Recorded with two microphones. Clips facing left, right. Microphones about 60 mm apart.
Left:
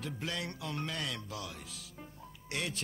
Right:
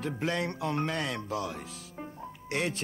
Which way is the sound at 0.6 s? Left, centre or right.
Right.